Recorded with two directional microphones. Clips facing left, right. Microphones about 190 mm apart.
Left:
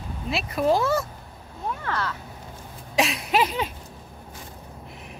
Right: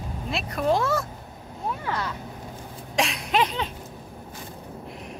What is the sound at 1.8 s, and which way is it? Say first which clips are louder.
Speech: left 2 dB; 15° right (ahead or behind).